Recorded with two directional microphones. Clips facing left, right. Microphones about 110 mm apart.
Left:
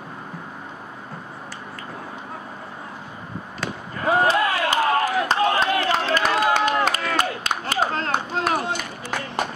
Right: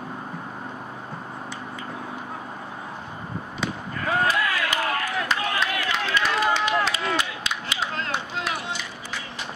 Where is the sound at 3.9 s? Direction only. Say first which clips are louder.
Left 5 dB; 25° left (ahead or behind).